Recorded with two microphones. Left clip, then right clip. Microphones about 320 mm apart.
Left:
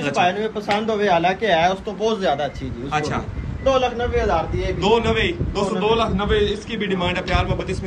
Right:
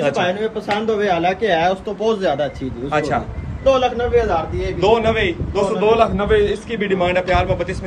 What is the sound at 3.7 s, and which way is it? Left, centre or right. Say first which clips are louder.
Speech: right 3 dB; left.